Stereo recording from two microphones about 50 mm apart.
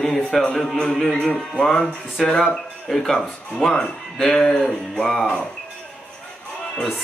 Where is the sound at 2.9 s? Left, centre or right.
Centre.